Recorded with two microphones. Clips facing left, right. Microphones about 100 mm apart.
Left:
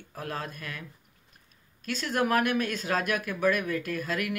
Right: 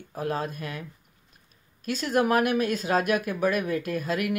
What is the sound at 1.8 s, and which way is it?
Speech, 15° right (ahead or behind).